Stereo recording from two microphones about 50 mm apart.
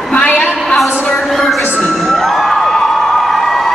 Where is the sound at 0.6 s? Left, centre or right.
Centre.